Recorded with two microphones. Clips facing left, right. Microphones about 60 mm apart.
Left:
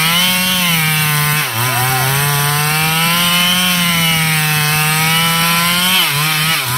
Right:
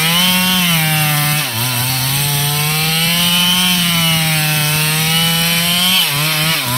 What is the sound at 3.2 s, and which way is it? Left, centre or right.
Rub, centre.